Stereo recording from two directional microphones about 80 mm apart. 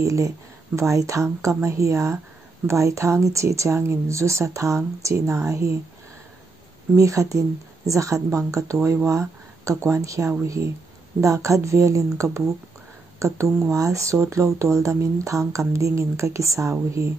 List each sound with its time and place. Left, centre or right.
0.0 s speech: right
7.0 s speech: right